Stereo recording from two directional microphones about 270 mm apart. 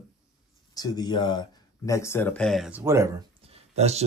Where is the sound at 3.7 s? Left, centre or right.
Right.